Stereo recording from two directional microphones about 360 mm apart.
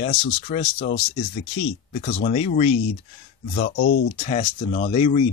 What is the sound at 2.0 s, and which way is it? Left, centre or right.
Speech, centre.